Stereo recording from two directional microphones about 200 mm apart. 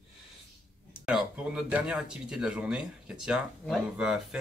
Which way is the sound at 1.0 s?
5° right (ahead or behind).